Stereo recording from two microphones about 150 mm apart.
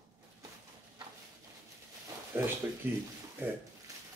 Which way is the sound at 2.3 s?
15° right (ahead or behind).